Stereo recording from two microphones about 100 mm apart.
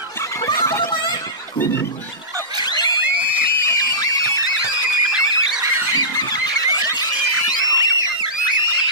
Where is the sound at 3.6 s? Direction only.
35° left (ahead or behind).